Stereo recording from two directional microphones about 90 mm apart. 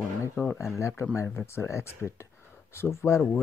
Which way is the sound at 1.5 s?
30° left (ahead or behind).